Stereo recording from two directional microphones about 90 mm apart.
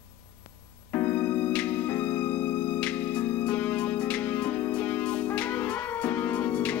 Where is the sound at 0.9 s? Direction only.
20° left (ahead or behind).